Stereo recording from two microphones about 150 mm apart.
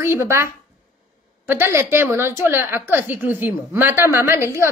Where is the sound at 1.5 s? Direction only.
15° right (ahead or behind).